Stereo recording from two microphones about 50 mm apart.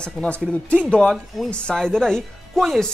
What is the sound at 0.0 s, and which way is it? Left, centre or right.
Speech, left.